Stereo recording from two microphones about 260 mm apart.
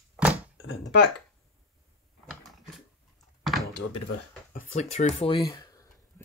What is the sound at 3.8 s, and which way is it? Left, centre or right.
Speech, left.